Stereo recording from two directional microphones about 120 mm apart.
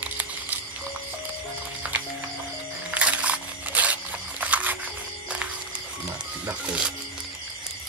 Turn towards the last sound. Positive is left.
turn(degrees=-5)  # may be behind; listen again after turning